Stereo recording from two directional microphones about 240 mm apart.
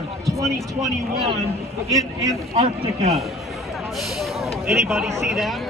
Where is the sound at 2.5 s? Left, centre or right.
Right.